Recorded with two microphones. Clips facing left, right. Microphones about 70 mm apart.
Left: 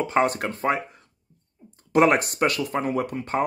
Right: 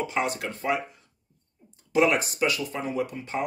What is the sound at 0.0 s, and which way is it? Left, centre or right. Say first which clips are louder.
Speech: left 6 dB; left.